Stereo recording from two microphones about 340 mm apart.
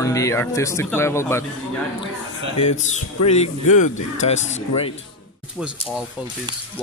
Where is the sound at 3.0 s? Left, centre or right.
Centre.